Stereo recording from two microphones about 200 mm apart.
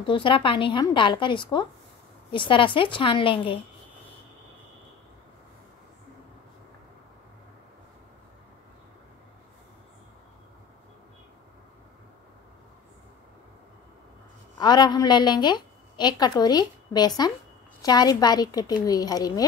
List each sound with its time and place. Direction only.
0.0 s a woman's voice: 25° left (ahead or behind)
14.6 s a woman's voice: 20° left (ahead or behind)